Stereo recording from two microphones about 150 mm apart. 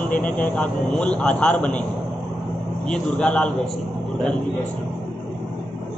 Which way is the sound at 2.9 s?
5° left (ahead or behind).